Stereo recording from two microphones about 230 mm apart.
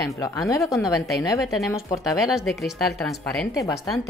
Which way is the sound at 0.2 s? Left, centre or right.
Centre.